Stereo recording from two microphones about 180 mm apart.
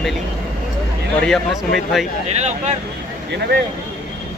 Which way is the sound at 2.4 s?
40° right (ahead or behind).